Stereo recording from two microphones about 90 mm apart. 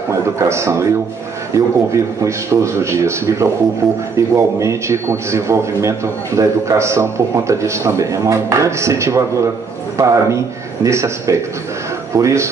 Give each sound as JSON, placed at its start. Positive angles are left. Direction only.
{"t": 0.1, "sound": "a man's voice", "side_deg": -30}
{"t": 3.8, "sound": "speech", "side_deg": 0}
{"t": 4.4, "sound": "a man's voice", "side_deg": -35}